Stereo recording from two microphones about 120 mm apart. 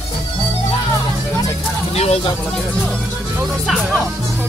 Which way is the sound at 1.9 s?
60° left (ahead or behind).